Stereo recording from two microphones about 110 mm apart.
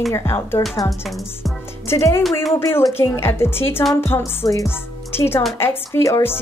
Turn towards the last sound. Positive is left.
turn(degrees=25)  # may be behind; listen again after turning